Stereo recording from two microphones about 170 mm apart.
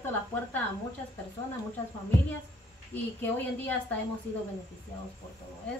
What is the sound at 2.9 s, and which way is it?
Speech, 10° left (ahead or behind).